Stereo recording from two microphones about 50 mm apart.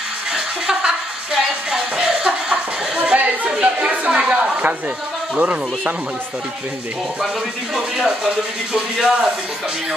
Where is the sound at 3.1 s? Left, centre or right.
Right.